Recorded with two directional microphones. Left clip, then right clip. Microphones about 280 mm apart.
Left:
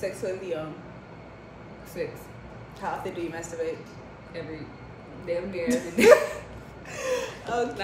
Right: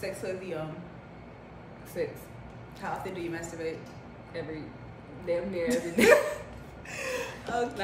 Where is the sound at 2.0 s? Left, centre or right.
Centre.